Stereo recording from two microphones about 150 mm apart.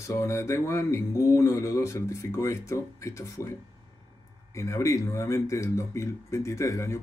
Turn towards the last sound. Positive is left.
turn(degrees=20)  # may be behind; listen again after turning